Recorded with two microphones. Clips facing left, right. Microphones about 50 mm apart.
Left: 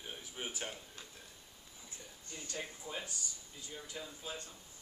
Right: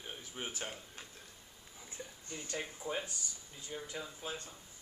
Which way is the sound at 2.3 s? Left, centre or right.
Right.